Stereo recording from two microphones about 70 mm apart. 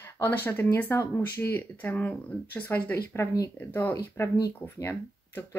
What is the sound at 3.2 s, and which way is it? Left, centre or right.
Speech, left.